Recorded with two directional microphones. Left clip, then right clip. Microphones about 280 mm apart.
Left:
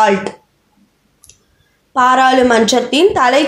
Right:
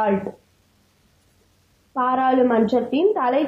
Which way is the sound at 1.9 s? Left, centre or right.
Left.